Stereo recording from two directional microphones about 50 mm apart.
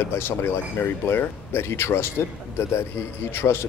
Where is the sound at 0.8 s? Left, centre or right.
Left.